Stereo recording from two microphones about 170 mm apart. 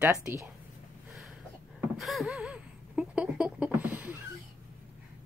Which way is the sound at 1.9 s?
Centre (ahead or behind).